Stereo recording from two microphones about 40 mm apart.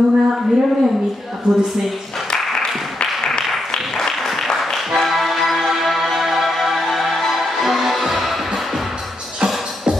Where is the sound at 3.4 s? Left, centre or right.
Centre.